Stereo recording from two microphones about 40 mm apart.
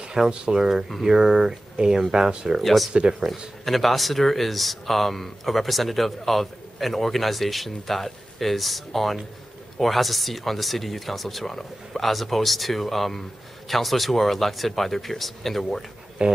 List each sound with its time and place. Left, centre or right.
0.3 s speech: right
2.6 s speech: centre
2.9 s speech: right
3.6 s speech: centre
16.2 s speech: right